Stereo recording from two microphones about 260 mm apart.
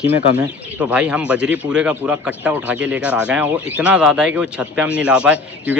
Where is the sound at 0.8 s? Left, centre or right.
Centre.